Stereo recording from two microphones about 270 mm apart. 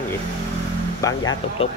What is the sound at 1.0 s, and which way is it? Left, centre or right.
Speech, centre.